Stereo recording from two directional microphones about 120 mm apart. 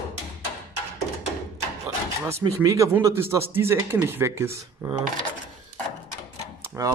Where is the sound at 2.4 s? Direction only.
30° right (ahead or behind).